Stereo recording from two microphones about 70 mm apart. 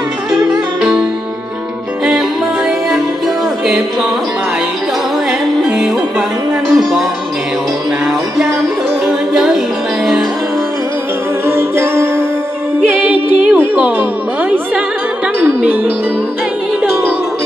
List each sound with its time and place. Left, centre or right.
0.3 s music: centre
5.6 s music: centre
9.0 s music: centre
11.4 s music: right
12.9 s music: centre
15.4 s music: centre